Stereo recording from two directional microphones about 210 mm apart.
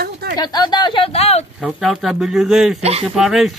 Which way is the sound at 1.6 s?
5° right (ahead or behind).